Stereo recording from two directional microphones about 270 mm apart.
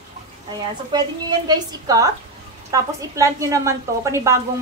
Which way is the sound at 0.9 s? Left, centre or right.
Centre.